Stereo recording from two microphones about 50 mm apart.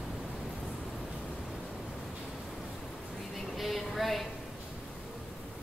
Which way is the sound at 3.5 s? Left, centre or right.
Centre.